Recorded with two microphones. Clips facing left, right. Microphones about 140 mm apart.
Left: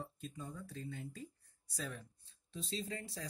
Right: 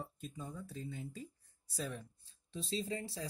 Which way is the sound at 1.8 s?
25° right (ahead or behind).